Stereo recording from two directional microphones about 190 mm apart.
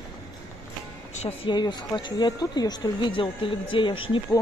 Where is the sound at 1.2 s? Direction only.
25° left (ahead or behind).